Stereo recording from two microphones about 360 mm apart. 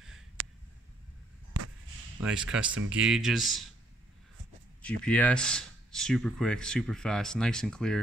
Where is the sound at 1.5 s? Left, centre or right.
Right.